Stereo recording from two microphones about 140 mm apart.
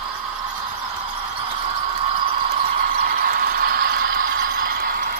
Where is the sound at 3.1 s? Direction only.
90° right.